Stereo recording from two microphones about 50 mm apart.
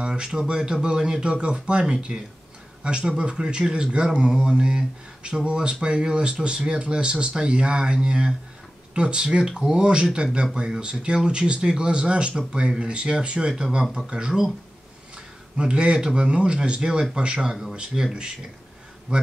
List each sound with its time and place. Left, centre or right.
0.0 s speech: centre
15.5 s speech: centre